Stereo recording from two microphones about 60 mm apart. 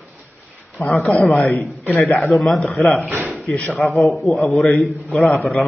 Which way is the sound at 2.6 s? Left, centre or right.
Left.